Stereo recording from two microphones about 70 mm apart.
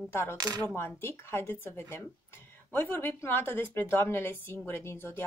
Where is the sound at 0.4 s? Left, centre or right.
Right.